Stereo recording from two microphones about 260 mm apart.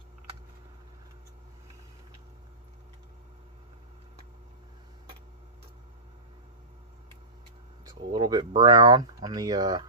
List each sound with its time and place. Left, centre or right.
7.8 s speech: centre